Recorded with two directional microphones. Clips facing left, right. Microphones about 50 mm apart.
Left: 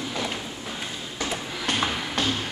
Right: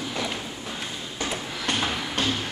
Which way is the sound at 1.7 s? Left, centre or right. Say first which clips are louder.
Left 1 dB; centre.